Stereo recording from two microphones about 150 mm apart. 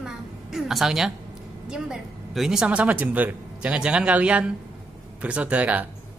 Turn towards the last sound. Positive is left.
turn(degrees=-10)  # may be behind; listen again after turning